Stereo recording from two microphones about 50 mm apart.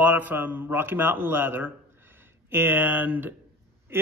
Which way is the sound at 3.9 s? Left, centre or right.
Right.